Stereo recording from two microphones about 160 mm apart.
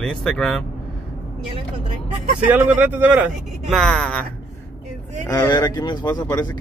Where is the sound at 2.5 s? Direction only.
10° right (ahead or behind).